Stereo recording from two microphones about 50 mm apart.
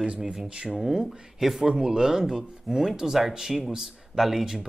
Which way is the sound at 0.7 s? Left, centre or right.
Centre.